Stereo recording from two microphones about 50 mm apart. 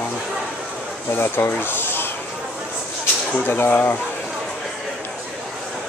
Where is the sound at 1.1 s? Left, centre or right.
Left.